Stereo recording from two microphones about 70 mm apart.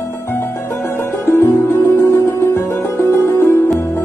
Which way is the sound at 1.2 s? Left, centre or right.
Left.